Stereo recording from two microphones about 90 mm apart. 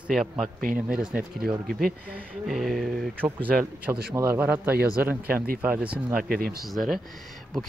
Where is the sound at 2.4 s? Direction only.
Centre (ahead or behind).